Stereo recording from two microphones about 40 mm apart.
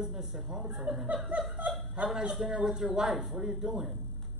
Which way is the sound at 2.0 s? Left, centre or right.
Centre.